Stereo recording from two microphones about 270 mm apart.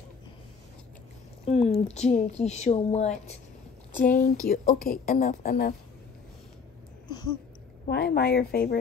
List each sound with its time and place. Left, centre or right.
1.4 s speech: left
7.1 s a sound: centre
7.8 s speech: left